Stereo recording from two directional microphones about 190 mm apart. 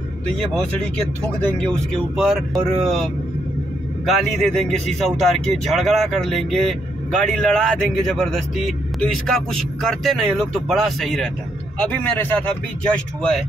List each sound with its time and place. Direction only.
2.0 s a man's voice: centre (ahead or behind)